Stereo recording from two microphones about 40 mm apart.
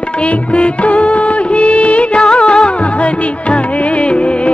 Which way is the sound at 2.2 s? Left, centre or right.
Left.